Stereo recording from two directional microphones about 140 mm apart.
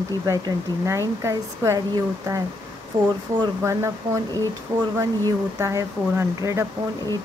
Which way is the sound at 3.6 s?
20° right (ahead or behind).